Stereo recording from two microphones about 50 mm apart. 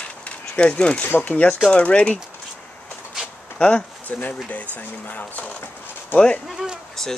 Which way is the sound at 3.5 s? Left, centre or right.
Left.